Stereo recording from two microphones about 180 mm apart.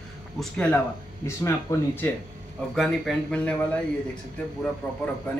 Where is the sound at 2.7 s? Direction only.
Centre (ahead or behind).